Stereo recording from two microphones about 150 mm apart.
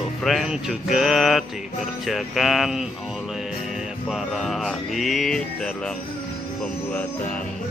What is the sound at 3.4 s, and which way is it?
Music, centre (ahead or behind).